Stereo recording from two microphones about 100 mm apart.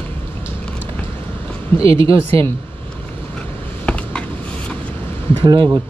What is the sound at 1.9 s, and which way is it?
Speech, 65° right (ahead or behind).